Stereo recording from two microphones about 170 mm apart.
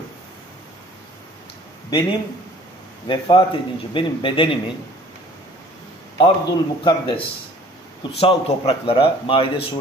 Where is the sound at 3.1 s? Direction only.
30° left (ahead or behind).